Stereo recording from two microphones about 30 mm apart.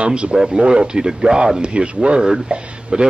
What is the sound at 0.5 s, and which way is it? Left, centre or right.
Speech, right.